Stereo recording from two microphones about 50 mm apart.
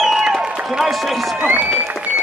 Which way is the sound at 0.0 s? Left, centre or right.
Centre.